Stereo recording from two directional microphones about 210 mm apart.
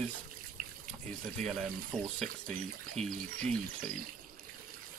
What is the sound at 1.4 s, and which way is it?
Speech, centre (ahead or behind).